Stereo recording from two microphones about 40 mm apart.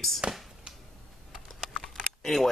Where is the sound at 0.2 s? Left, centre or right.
Right.